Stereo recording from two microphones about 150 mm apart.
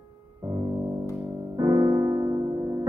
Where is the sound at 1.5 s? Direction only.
25° right (ahead or behind).